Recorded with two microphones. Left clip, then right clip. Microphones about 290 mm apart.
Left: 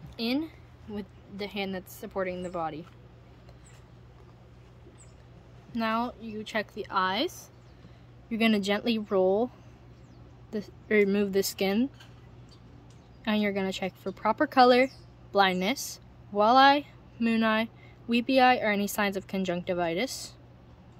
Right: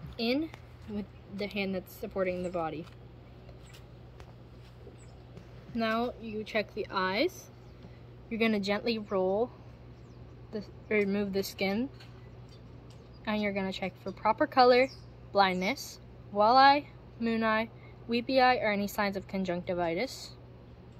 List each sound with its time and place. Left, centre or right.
0.2 s speech: left
5.8 s speech: left
10.5 s speech: left
13.2 s speech: left